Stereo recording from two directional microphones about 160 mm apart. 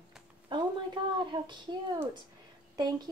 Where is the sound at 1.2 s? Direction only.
30° right (ahead or behind).